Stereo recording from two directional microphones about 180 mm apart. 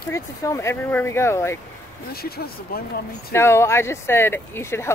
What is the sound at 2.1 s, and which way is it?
Speech, 60° left (ahead or behind).